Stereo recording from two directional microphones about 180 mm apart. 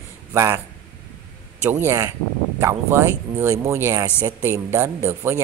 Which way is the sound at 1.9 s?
15° right (ahead or behind).